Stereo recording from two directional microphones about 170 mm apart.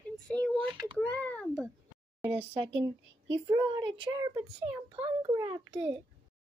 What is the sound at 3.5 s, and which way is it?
Speech, 25° right (ahead or behind).